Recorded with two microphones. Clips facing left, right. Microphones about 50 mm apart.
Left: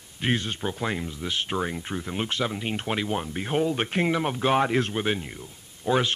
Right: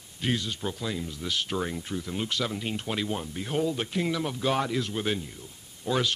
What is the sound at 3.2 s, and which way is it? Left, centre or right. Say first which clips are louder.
Speech: left 3 dB; left.